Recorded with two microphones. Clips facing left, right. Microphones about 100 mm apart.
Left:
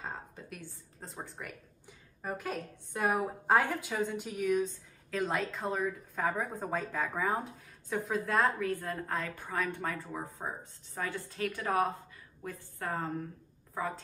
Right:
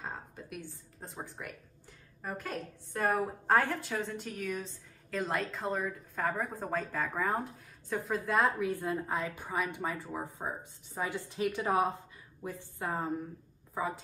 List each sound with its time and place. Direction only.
0.0 s a sound: centre (ahead or behind)
1.0 s a woman's voice: centre (ahead or behind)
8.5 s a woman's voice: 15° right (ahead or behind)